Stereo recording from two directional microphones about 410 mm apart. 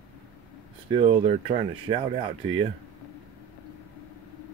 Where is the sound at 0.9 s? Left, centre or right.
Centre.